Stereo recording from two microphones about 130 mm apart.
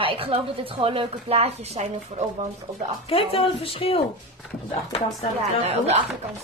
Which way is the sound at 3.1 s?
45° left (ahead or behind).